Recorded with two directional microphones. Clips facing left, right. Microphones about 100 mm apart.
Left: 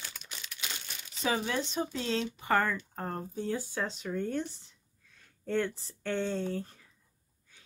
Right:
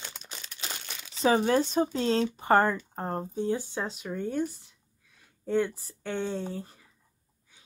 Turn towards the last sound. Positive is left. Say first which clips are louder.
# even
turn(degrees=-10)  # may be behind; listen again after turning